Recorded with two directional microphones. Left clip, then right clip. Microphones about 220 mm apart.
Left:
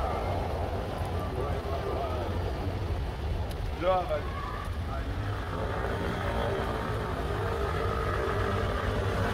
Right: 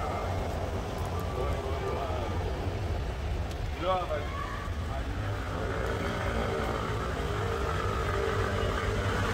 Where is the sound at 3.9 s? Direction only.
40° left (ahead or behind).